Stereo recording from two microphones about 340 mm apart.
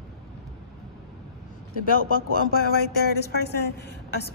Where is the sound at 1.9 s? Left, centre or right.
Left.